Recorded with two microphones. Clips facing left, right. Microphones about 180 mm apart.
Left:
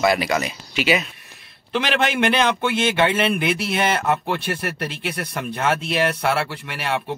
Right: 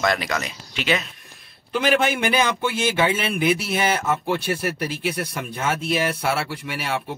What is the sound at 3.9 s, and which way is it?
Speech, 65° left (ahead or behind).